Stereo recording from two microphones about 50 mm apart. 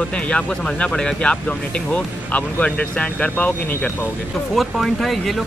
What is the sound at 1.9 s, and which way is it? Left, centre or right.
Speech, left.